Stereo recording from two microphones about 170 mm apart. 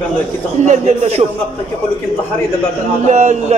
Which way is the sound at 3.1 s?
45° right (ahead or behind).